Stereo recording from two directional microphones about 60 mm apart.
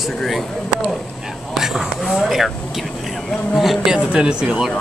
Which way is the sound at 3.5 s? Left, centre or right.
Centre.